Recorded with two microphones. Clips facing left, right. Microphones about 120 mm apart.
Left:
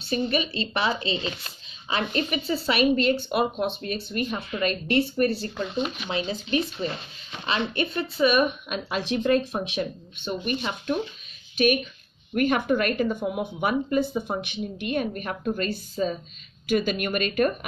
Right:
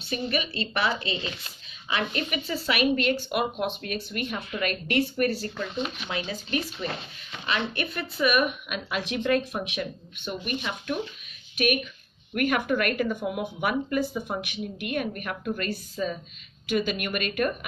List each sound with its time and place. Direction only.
0.0 s speech: 30° left (ahead or behind)
16.6 s a woman's voice: 40° left (ahead or behind)